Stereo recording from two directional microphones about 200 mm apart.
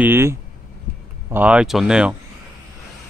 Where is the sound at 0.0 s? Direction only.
10° right (ahead or behind).